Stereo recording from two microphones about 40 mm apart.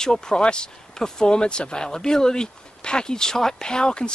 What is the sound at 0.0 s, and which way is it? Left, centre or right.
A man's voice, centre.